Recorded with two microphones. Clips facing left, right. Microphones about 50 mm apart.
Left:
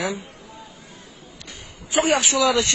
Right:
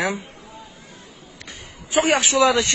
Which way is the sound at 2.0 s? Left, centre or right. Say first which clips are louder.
Right 2 dB; right.